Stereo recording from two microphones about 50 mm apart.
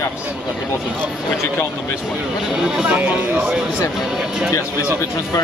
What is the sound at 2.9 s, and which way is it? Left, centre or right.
Speech, right.